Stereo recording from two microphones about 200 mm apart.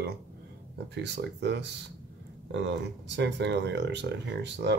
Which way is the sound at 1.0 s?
60° right (ahead or behind).